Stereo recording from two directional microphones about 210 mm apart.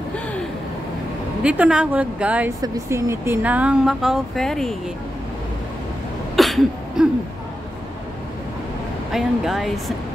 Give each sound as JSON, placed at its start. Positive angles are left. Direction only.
{"t": 1.4, "sound": "a woman's voice", "side_deg": -5}
{"t": 6.3, "sound": "cough", "side_deg": 0}
{"t": 9.1, "sound": "speech", "side_deg": 0}